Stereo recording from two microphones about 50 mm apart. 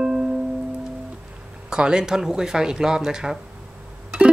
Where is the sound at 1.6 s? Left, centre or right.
Centre.